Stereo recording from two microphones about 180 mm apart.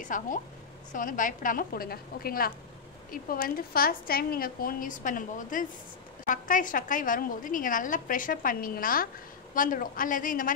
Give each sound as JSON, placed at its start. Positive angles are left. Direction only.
{"t": 0.0, "sound": "a woman's voice", "side_deg": 45}